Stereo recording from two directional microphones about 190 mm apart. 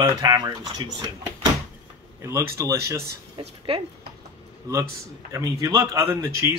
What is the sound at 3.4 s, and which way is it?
Speech, 30° right (ahead or behind).